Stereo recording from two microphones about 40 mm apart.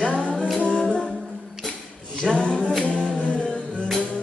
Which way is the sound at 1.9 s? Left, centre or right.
Left.